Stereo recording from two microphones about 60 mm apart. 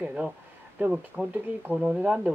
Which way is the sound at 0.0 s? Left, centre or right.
Centre.